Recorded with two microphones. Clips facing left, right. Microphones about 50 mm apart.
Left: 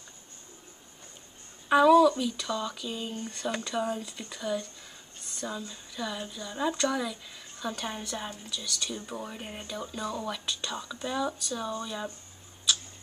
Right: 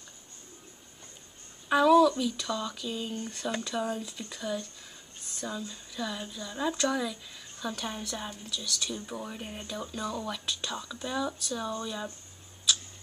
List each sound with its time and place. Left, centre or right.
1.7 s speech: centre